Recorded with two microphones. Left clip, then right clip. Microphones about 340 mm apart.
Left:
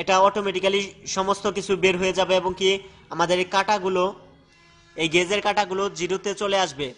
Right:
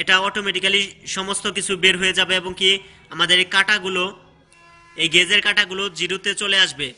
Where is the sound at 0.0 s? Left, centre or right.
Centre.